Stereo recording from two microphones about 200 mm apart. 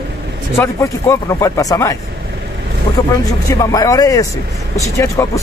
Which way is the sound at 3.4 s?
15° left (ahead or behind).